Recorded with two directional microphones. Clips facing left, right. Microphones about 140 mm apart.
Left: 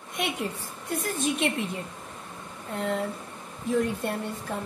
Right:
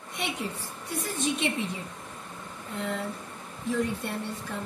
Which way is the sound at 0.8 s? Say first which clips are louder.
Left 2 dB; 50° left (ahead or behind).